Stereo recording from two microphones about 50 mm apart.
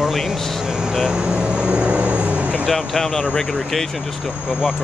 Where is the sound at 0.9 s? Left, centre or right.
Centre.